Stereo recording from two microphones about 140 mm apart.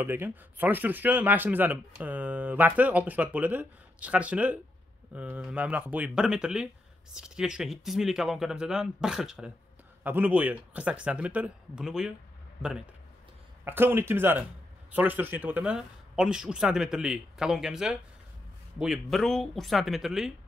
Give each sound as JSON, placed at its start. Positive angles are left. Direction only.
{"t": 0.0, "sound": "speech", "side_deg": -15}
{"t": 13.7, "sound": "speech", "side_deg": -15}